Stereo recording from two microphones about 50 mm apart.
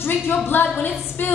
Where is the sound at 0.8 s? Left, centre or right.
Left.